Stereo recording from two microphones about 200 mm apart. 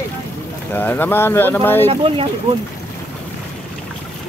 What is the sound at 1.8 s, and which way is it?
Speech, 25° right (ahead or behind).